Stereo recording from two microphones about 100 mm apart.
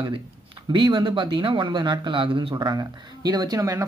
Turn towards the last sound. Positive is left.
turn(degrees=-35)  # may be behind; listen again after turning